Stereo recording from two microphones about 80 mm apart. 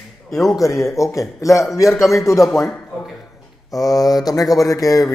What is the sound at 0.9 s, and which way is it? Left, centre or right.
A man's voice, left.